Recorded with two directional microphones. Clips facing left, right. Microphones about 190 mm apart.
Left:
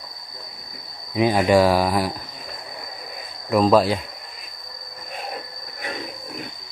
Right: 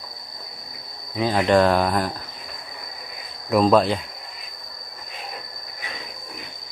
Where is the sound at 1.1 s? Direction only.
10° left (ahead or behind).